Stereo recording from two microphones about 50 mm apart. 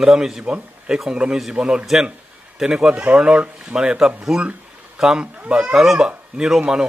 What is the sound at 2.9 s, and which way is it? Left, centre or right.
Speech, right.